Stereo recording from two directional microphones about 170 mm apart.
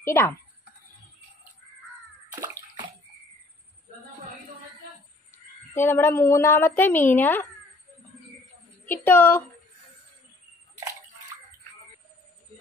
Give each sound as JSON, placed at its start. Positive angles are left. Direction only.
{"t": 0.0, "sound": "a woman's voice", "side_deg": 15}
{"t": 5.8, "sound": "a woman's voice", "side_deg": 10}
{"t": 8.8, "sound": "a woman's voice", "side_deg": 10}